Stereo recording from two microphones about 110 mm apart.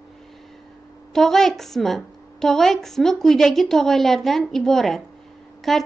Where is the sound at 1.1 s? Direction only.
5° left (ahead or behind).